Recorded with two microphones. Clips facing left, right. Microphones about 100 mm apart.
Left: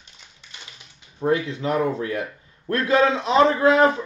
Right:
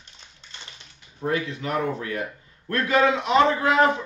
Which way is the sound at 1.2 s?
25° left (ahead or behind).